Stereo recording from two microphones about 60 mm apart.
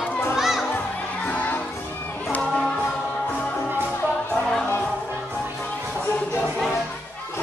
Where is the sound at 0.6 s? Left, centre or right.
Left.